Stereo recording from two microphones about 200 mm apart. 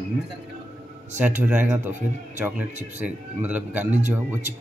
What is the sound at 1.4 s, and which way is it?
Speech, 10° right (ahead or behind).